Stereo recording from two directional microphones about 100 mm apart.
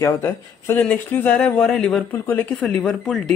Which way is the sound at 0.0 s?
25° left (ahead or behind).